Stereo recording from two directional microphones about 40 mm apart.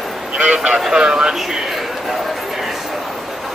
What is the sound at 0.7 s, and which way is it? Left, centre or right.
Speech, centre.